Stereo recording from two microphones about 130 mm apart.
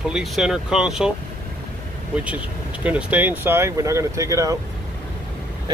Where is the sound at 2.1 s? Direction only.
10° right (ahead or behind).